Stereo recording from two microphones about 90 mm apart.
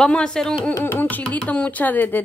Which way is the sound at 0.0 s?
10° left (ahead or behind).